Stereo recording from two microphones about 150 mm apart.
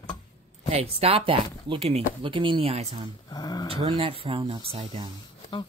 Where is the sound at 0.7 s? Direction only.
40° right (ahead or behind).